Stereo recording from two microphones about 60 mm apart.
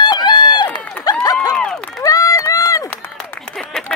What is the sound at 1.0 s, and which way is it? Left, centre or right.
Run, left.